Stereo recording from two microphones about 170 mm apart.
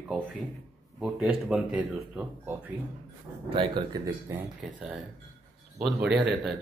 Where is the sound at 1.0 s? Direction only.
5° right (ahead or behind).